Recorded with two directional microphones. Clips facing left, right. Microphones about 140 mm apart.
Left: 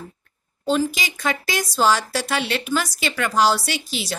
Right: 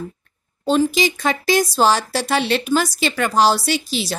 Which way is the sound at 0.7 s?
30° right (ahead or behind).